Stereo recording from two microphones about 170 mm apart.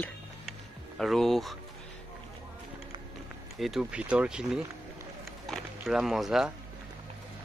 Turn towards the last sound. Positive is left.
turn(degrees=0)  # may be behind; listen again after turning